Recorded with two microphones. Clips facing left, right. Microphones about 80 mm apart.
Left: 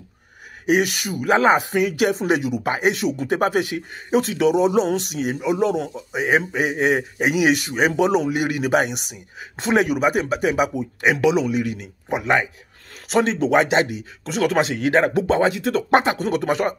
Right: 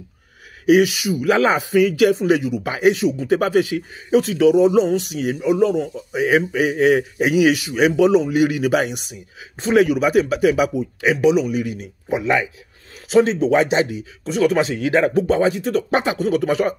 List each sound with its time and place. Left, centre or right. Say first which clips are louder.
0.7 s speech: right 5 dB; left
1.6 s speech: right 5 dB; left
3.3 s speech: right 2 dB; left
6.1 s speech: right 3 dB; left
9.1 s speech: even; left
9.8 s speech: right 4 dB; left
10.8 s speech: right 1 dB; left
11.5 s speech: even; left
12.2 s speech: even; left
12.9 s a sound: right 4 dB; left
13.8 s speech: right 3 dB; left
15.5 s speech: right 1 dB; left
15.9 s speech: left 2 dB; left